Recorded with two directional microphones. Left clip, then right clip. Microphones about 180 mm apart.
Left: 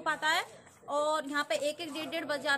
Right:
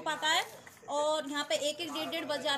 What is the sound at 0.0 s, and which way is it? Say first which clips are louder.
Speech: even; 40° left (ahead or behind).